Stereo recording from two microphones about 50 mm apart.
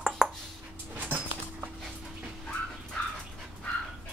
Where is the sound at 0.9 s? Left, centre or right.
Right.